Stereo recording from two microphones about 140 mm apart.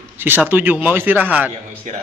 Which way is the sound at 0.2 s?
15° right (ahead or behind).